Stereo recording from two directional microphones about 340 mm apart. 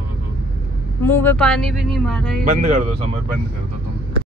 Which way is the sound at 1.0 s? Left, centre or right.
Centre.